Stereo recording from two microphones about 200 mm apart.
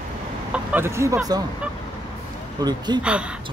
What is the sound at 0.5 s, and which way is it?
Speech, 10° right (ahead or behind).